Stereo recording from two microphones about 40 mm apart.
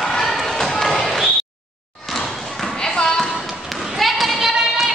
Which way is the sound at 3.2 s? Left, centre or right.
Centre.